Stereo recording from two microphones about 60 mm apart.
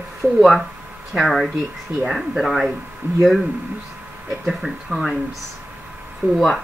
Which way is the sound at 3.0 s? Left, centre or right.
Right.